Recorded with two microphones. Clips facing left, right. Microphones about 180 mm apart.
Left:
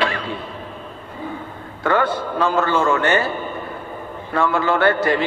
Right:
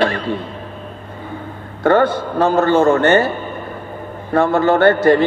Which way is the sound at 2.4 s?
45° right (ahead or behind).